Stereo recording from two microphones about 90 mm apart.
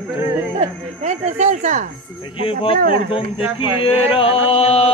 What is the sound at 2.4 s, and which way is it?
Speech, 85° left.